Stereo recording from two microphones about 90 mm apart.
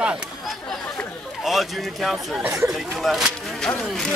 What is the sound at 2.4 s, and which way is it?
Speech, 35° right (ahead or behind).